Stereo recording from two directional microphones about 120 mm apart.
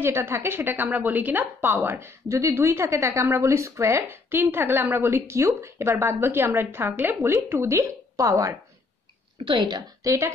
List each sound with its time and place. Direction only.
0.0 s a woman's voice: 20° right (ahead or behind)
9.4 s a woman's voice: 40° right (ahead or behind)